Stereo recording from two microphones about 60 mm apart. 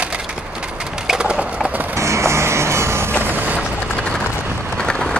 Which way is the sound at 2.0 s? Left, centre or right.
Right.